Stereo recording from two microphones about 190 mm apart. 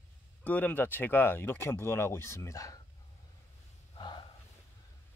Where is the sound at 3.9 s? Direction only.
25° left (ahead or behind).